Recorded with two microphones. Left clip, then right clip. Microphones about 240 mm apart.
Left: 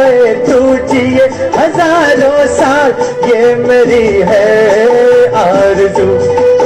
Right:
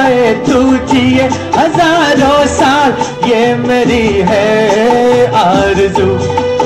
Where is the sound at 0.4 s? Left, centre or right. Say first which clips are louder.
Left 3 dB; right.